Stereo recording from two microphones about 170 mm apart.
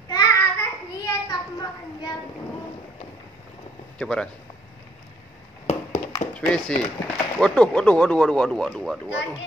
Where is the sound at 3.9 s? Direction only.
5° left (ahead or behind).